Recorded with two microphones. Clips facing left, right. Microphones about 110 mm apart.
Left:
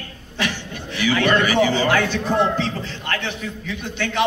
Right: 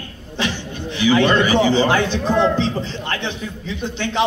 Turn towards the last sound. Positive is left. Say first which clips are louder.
# right 2 dB
turn(degrees=-25)  # may be behind; listen again after turning